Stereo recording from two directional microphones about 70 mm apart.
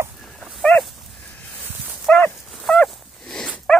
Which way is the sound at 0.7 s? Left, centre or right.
Left.